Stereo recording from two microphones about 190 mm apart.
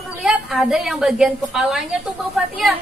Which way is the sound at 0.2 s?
Centre (ahead or behind).